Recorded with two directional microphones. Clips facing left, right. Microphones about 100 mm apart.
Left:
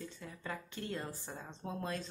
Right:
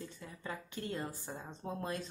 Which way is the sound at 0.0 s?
10° right (ahead or behind).